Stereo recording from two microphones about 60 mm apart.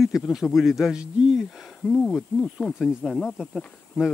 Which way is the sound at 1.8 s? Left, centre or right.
Centre.